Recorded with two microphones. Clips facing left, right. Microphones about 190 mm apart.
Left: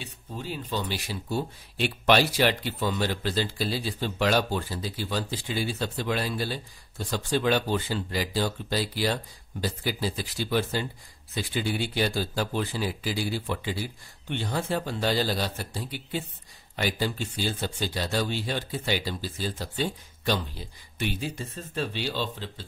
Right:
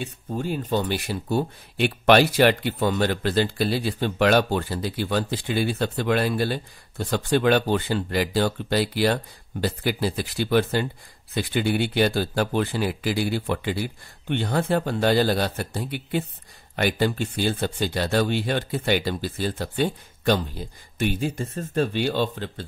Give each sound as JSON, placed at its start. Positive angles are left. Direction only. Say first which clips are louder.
{"t": 0.0, "sound": "speech", "louder": "right 9 dB", "side_deg": -50}